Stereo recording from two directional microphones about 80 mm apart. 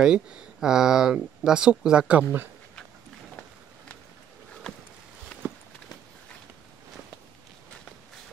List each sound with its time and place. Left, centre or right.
0.0 s speech: centre
5.3 s walk: centre